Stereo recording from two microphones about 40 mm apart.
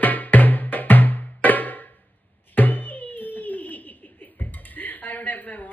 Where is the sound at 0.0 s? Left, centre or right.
Left.